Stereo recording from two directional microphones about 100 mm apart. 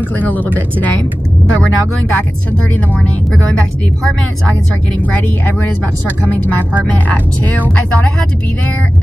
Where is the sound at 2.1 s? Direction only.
15° left (ahead or behind).